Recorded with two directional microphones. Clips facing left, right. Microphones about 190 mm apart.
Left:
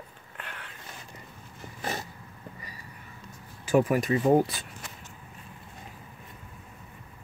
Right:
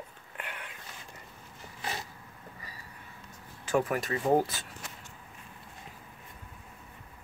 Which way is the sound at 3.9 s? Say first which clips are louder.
Left 6 dB; 15° left (ahead or behind).